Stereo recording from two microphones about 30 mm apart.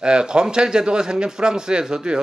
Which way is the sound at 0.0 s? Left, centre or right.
Right.